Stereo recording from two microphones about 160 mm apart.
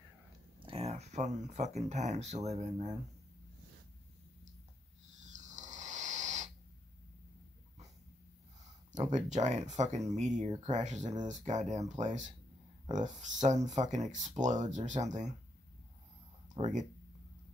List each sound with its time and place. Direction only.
0.7 s speech: 40° right (ahead or behind)
5.2 s a sound: 50° right (ahead or behind)
9.1 s speech: 50° right (ahead or behind)
16.5 s speech: 50° right (ahead or behind)